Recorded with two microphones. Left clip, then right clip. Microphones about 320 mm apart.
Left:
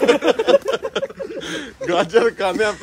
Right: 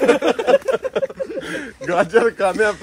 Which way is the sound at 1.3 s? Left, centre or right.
Right.